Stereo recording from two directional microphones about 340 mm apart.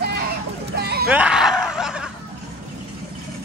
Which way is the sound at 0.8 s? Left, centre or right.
Right.